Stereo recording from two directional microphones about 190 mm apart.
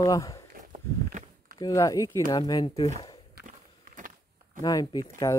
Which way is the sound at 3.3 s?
45° right (ahead or behind).